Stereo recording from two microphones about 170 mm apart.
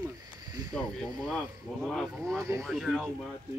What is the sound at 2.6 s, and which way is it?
Speech, centre (ahead or behind).